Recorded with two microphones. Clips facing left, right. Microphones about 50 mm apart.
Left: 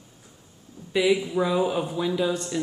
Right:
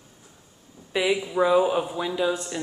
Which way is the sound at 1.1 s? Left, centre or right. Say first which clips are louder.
Right 3 dB; centre.